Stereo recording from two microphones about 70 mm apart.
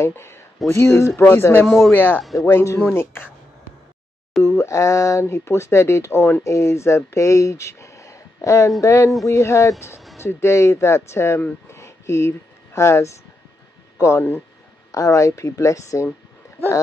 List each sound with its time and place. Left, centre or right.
0.0 s speech: left
2.4 s speech: left
2.8 s speech: left
4.3 s a sound: centre
4.6 s speech: left
5.2 s speech: left
11.7 s a sound: left
13.9 s speech: left